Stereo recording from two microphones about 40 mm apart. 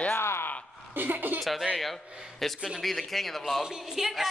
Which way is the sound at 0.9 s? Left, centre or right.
Right.